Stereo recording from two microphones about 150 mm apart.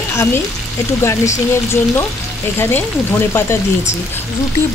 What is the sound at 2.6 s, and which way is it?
Speech, 15° left (ahead or behind).